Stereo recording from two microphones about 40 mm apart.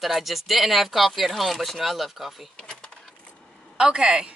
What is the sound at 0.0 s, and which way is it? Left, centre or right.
Speech, centre.